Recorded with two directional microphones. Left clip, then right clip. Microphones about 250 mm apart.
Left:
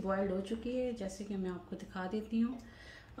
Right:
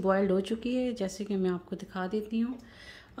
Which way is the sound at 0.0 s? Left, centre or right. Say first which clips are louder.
Right 8 dB; right.